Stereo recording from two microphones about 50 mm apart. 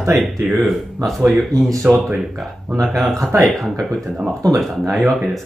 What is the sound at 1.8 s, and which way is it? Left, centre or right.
Speech, right.